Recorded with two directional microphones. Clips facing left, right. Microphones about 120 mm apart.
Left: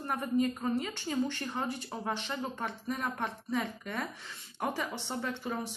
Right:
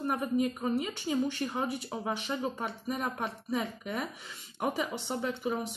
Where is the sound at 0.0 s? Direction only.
10° right (ahead or behind).